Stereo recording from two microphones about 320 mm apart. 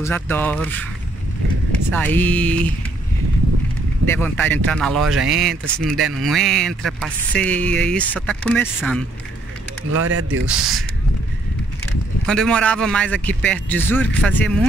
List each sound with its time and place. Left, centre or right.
0.0 s speech: centre
1.9 s speech: centre
4.2 s speech: centre
9.9 s speech: right
10.4 s speech: centre
12.3 s speech: centre